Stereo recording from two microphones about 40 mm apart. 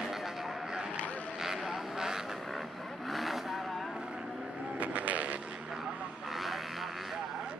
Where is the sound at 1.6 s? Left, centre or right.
Centre.